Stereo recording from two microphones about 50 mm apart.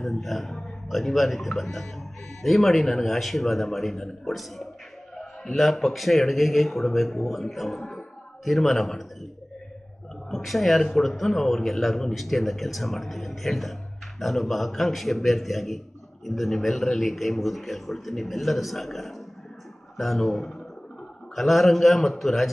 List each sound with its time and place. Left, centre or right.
0.0 s a man's voice: centre
10.3 s a man's voice: centre